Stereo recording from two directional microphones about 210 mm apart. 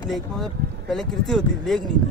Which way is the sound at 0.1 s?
Centre (ahead or behind).